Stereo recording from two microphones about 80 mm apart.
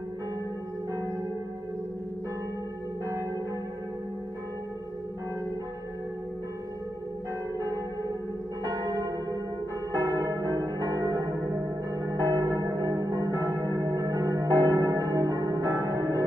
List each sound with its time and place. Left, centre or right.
7.5 s church bell: right